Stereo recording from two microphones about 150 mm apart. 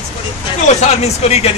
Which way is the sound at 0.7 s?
45° left (ahead or behind).